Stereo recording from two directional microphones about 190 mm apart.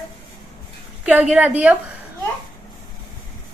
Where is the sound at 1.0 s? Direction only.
5° right (ahead or behind).